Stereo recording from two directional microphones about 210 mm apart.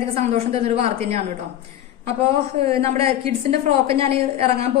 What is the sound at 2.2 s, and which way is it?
A woman's voice, 25° right (ahead or behind).